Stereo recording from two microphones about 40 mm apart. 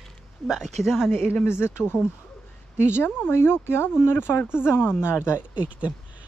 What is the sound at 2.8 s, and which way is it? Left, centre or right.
Speech, left.